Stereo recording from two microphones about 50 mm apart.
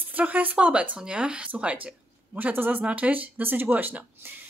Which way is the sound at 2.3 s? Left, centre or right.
Right.